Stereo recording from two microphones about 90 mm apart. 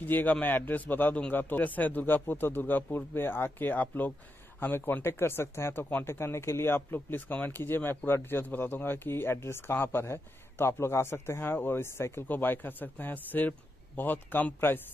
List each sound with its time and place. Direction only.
0.0 s speech: 20° left (ahead or behind)